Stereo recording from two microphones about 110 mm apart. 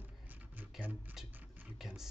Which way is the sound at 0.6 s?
15° right (ahead or behind).